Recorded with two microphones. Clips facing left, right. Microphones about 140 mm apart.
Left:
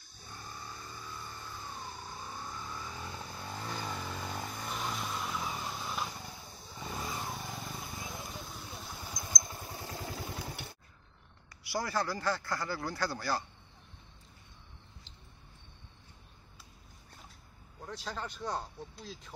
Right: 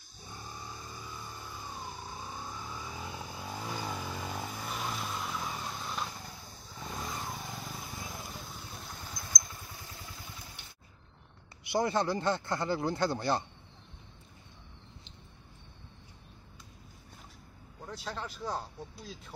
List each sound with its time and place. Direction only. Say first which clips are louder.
0.3 s vehicle: right 1 dB; 15° right (ahead or behind); by 9.3 s 10° left (ahead or behind)
9.3 s vehicle: left 3 dB; 30° left (ahead or behind)
9.9 s vehicle: left 8 dB; 80° left
11.6 s speech: right 5 dB; 20° right (ahead or behind)
17.8 s speech: even; centre (ahead or behind)